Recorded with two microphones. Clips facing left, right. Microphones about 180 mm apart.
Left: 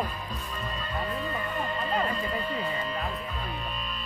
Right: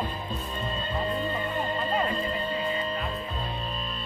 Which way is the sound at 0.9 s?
30° right (ahead or behind).